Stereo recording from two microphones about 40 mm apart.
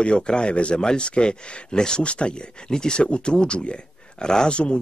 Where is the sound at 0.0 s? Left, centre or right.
Left.